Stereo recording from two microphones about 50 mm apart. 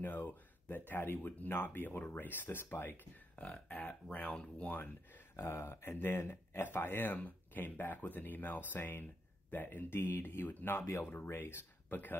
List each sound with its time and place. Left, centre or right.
0.0 s speech: left
3.6 s speech: left
4.3 s speech: centre
5.3 s speech: left
5.9 s speech: left
10.7 s speech: left
11.9 s speech: left